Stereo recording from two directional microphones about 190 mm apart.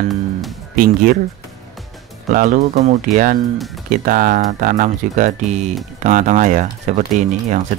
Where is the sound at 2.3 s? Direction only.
45° right (ahead or behind).